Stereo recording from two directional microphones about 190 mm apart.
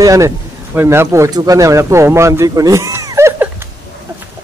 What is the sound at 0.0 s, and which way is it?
A man's voice, 15° right (ahead or behind).